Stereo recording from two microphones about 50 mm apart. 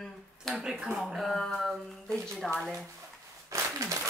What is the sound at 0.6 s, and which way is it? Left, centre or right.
Speech, centre.